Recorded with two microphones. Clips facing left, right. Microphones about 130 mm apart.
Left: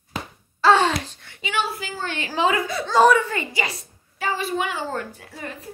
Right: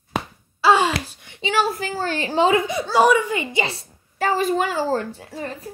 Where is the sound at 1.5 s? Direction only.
40° right (ahead or behind).